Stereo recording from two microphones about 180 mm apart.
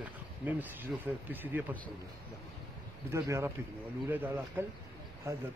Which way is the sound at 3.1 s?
15° right (ahead or behind).